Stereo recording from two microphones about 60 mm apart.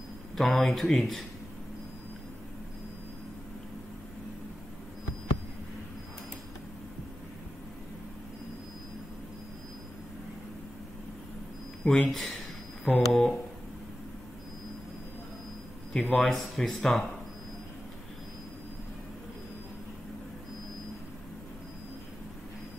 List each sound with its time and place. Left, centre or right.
0.4 s speech: centre
11.8 s speech: centre
12.1 s speech: centre
15.9 s speech: centre